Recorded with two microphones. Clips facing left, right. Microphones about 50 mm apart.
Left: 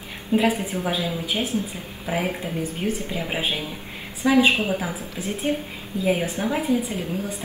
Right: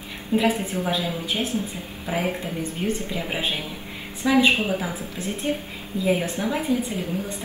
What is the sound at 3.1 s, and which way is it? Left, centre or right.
A woman's voice, centre.